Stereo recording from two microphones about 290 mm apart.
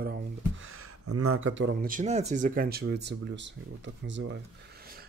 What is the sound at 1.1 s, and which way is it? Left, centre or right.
Speech, right.